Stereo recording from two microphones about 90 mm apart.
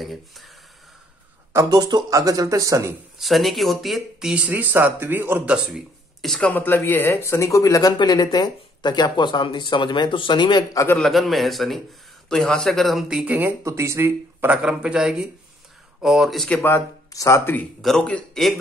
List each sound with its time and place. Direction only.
0.0 s a man's voice: centre (ahead or behind)
1.7 s speech: 50° right (ahead or behind); by 2.9 s 35° right (ahead or behind)
3.2 s speech: centre (ahead or behind); by 5.5 s 20° right (ahead or behind)
5.5 s speech: 10° right (ahead or behind)
6.2 s a man's voice: 5° left (ahead or behind)
6.5 s speech: 20° left (ahead or behind); by 7.9 s 40° left (ahead or behind)
8.0 s speech: 50° left (ahead or behind)
11.0 s a man's voice: centre (ahead or behind)
13.2 s speech: 15° right (ahead or behind)
13.7 s speech: 30° right (ahead or behind)
14.4 s a man's voice: 10° right (ahead or behind)
17.1 s speech: 35° left (ahead or behind)
17.8 s a man's voice: 10° left (ahead or behind)